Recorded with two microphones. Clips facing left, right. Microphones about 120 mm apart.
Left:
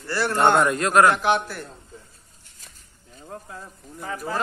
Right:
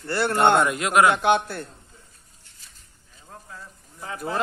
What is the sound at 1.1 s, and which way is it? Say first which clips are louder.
Speech: right 1 dB; 25° right (ahead or behind).